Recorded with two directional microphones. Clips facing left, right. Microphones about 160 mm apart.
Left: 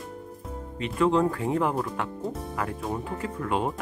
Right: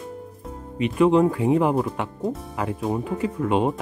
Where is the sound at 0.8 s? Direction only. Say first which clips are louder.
Right 6 dB; 15° right (ahead or behind).